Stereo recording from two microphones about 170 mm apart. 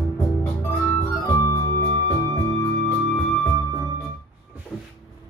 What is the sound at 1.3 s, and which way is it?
Music, 15° left (ahead or behind).